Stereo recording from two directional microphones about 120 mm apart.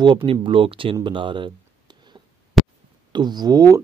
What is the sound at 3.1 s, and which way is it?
Speech, 40° right (ahead or behind).